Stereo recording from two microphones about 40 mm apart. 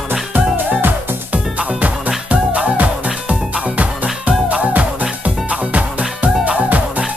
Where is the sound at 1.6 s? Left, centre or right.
Right.